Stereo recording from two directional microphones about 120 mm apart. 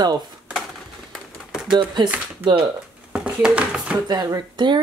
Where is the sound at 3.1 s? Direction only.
5° right (ahead or behind).